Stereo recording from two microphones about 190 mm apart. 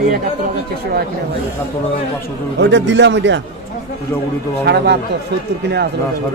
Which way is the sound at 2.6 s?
70° right (ahead or behind).